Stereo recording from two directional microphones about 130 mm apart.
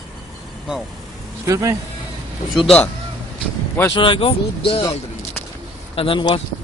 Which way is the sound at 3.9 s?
40° left (ahead or behind).